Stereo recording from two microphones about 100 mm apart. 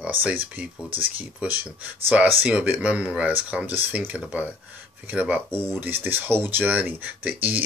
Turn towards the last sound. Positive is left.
turn(degrees=-15)  # may be behind; listen again after turning